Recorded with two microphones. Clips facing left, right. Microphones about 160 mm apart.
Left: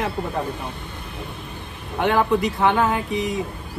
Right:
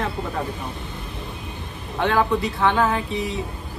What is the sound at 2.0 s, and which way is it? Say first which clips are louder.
Speech: left 1 dB; 20° left (ahead or behind).